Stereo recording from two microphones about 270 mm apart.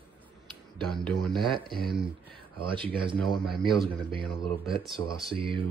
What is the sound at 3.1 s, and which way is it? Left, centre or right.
Speech, centre.